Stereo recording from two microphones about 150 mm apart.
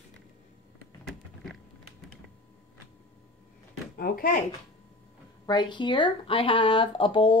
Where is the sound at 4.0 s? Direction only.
70° left (ahead or behind).